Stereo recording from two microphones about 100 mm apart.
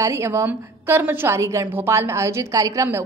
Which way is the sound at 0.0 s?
30° right (ahead or behind).